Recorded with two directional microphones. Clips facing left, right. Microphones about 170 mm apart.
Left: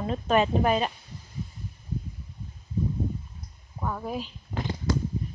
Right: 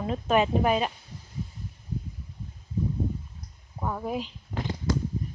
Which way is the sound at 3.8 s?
15° right (ahead or behind).